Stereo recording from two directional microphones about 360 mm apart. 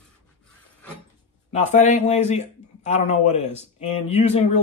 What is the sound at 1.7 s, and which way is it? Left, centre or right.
A man's voice, centre.